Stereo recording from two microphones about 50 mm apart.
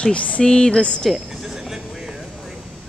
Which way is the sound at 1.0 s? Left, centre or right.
Centre.